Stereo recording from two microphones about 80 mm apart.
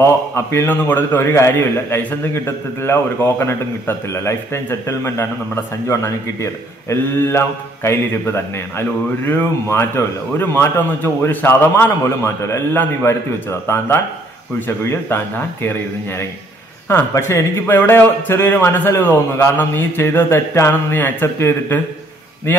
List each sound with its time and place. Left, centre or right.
0.0 s a man's voice: left
17.7 s a man's voice: left